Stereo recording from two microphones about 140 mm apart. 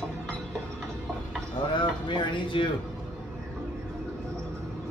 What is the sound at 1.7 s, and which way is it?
Speech, 35° left (ahead or behind).